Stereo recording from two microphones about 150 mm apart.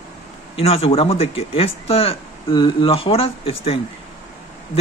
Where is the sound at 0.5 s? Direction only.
40° left (ahead or behind).